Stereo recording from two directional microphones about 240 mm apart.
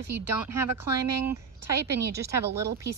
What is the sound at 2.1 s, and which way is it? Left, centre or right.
Speech, centre.